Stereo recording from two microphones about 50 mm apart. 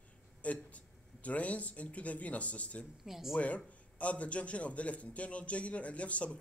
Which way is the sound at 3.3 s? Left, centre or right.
Left.